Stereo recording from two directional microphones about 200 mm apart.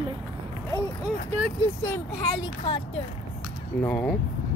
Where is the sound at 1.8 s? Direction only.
15° left (ahead or behind).